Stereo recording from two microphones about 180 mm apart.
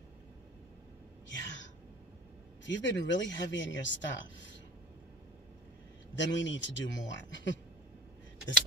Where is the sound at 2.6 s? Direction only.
90° left.